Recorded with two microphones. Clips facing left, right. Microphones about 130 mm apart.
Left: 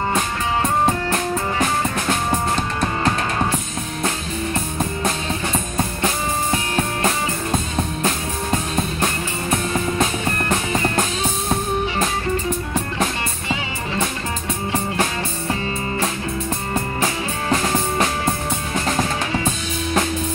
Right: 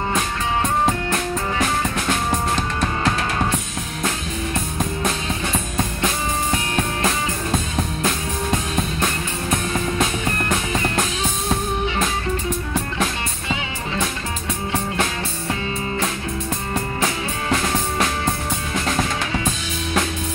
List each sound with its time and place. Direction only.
0.8 s music: 15° left (ahead or behind)
9.5 s music: centre (ahead or behind)
10.5 s music: 15° left (ahead or behind)
16.7 s music: 10° left (ahead or behind)